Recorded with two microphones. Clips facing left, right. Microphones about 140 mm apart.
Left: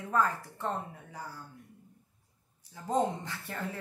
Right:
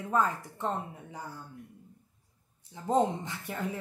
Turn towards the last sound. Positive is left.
turn(degrees=-15)  # may be behind; listen again after turning